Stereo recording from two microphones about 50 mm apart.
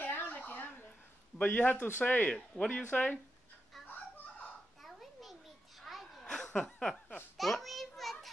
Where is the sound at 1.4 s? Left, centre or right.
Left.